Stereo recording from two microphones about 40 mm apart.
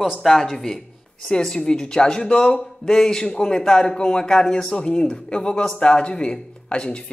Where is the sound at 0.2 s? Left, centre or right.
Centre.